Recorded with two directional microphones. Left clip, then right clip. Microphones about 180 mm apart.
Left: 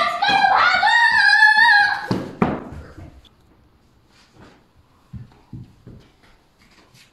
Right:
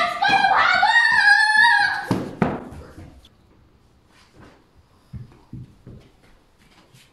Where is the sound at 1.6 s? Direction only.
Centre (ahead or behind).